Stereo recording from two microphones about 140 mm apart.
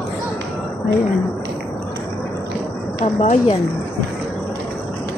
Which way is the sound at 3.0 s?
55° left (ahead or behind).